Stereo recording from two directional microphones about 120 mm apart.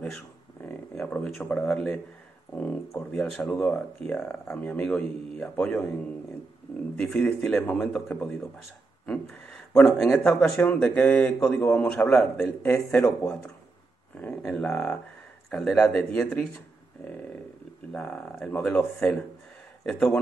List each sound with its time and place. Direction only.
0.7 s a sound: 10° left (ahead or behind)
2.9 s speech: 15° left (ahead or behind)
7.0 s a man's voice: 10° left (ahead or behind)